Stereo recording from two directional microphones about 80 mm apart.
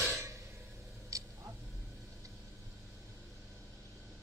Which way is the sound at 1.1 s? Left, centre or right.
Right.